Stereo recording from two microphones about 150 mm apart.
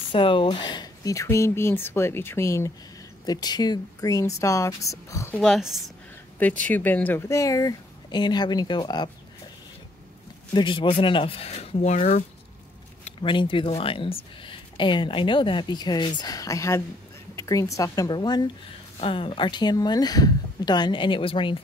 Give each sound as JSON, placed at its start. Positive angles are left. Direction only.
{"t": 0.1, "sound": "speech", "side_deg": 35}
{"t": 5.4, "sound": "speech", "side_deg": 0}
{"t": 10.5, "sound": "speech", "side_deg": 30}
{"t": 13.2, "sound": "speech", "side_deg": 35}